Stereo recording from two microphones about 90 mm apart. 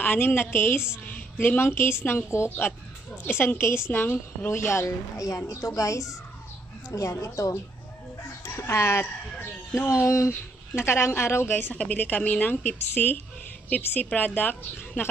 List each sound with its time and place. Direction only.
0.0 s a woman's voice: 20° left (ahead or behind)
10.0 s a woman's voice: 35° left (ahead or behind)